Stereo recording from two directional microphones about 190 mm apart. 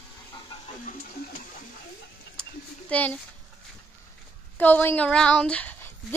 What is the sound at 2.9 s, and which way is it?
Speech, 10° left (ahead or behind).